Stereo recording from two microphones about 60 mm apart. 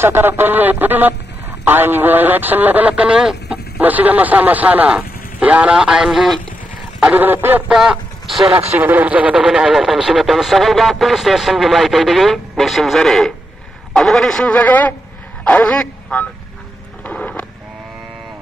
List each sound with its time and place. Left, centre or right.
0.0 s speech: right
3.2 s chicken: centre
3.8 s a man's voice: right; by 6.4 s centre
7.2 s speech: right
7.6 s speech: centre
8.7 s a man's voice: right
9.3 s speech: centre
14.5 s speech: left
17.0 s a sound: left